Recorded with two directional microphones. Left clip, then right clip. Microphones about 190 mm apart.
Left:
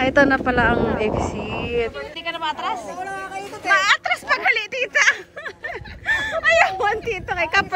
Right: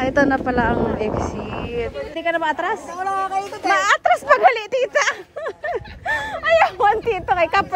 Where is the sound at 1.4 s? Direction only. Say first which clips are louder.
Left 1 dB; 30° left (ahead or behind).